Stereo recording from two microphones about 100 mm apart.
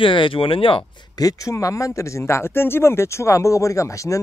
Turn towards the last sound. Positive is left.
turn(degrees=30)  # may be behind; listen again after turning